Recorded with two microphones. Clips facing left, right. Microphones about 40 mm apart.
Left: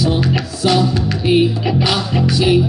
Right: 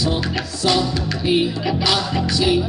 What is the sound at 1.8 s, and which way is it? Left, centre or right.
Music, left.